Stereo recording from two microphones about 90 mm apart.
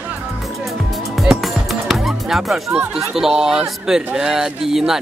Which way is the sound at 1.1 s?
Centre (ahead or behind).